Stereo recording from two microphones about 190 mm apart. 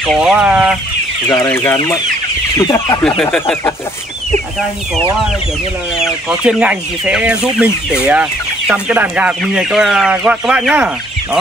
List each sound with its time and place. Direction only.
0.0 s speech: centre (ahead or behind)
1.3 s speech: 15° left (ahead or behind)
3.2 s speech: 5° left (ahead or behind)
5.9 s speech: 5° right (ahead or behind)